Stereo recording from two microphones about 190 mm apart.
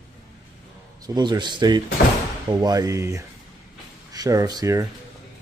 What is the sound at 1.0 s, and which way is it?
A man's voice, 20° right (ahead or behind).